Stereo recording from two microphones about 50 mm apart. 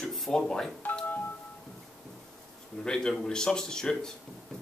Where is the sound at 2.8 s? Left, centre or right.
Centre.